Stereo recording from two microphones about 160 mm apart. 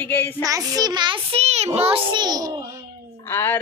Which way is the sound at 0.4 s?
20° right (ahead or behind).